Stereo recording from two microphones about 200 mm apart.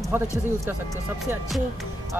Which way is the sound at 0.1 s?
10° right (ahead or behind).